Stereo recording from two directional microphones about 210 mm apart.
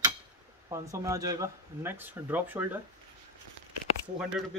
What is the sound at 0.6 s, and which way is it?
Speech, 15° right (ahead or behind).